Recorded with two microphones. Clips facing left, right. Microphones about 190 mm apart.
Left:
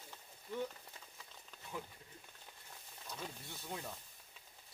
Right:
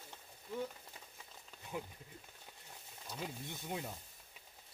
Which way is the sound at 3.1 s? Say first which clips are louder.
Right 3 dB; 15° right (ahead or behind).